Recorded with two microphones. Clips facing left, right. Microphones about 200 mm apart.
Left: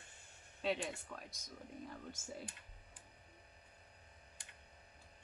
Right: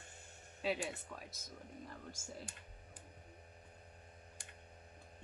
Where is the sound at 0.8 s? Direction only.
5° right (ahead or behind).